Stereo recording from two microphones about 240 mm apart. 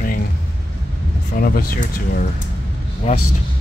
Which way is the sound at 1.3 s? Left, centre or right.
Left.